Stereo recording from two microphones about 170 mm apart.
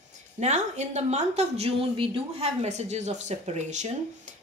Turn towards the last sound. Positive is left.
turn(degrees=-40)  # may be behind; listen again after turning